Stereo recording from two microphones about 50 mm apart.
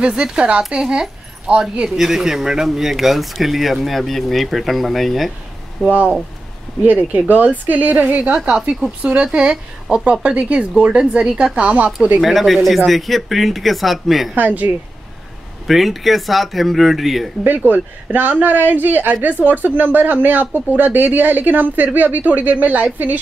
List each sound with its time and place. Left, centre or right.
0.0 s speech: centre
6.8 s speech: right
8.4 s speech: centre
9.0 s speech: right
12.2 s speech: centre
14.3 s speech: right
15.6 s speech: centre
18.1 s speech: right